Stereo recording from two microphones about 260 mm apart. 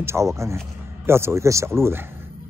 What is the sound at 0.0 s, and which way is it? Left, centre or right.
Speech, centre.